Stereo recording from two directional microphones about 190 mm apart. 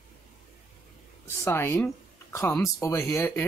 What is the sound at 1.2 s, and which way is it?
Speech, 10° left (ahead or behind).